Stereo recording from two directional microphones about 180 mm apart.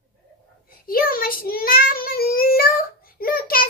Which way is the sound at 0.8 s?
55° left (ahead or behind).